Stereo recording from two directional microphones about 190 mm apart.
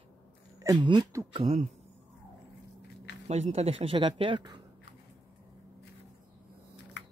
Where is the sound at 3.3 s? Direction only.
35° right (ahead or behind).